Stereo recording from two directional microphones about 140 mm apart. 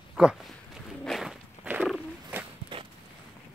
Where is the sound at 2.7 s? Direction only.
35° right (ahead or behind).